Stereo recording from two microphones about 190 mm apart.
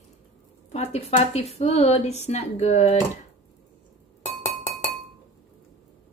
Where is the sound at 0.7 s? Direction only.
35° left (ahead or behind).